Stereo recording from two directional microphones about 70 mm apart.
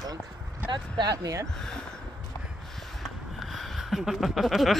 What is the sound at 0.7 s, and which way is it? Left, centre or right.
Speech, right.